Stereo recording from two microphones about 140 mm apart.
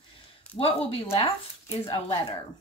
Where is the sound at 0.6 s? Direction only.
40° left (ahead or behind).